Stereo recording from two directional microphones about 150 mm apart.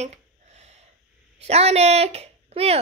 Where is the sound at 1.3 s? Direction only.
45° right (ahead or behind).